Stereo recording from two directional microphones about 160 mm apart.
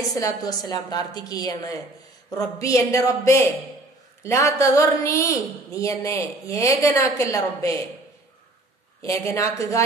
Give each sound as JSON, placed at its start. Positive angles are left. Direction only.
{"t": 0.1, "sound": "a woman's voice", "side_deg": 25}
{"t": 9.0, "sound": "a woman's voice", "side_deg": 20}